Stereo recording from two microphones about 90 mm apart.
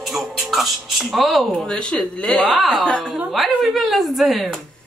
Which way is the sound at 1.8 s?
10° left (ahead or behind).